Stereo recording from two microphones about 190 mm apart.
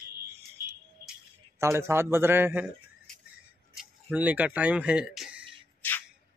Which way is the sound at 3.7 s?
10° right (ahead or behind).